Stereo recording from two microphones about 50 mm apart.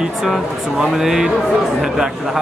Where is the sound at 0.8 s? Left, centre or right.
Centre.